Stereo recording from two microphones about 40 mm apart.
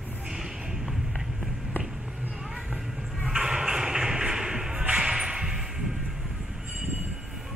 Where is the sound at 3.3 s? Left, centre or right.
Centre.